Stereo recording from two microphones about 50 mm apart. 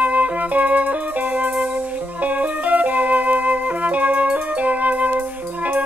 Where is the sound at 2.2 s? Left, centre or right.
Right.